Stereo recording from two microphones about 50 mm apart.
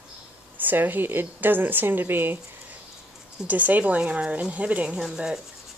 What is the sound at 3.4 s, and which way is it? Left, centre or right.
Speech, right.